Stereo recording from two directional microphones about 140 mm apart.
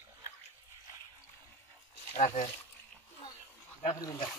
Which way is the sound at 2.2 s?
55° left (ahead or behind).